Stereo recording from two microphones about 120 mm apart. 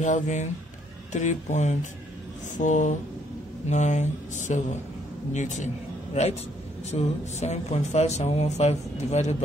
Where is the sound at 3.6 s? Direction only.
80° left.